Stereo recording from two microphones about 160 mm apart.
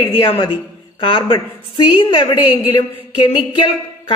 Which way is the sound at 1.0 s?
30° left (ahead or behind).